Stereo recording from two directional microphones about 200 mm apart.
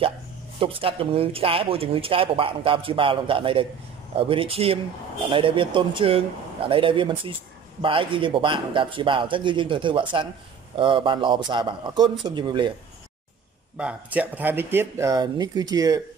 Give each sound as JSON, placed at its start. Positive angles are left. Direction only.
{"t": 0.6, "sound": "speech", "side_deg": -25}
{"t": 13.7, "sound": "speech", "side_deg": -5}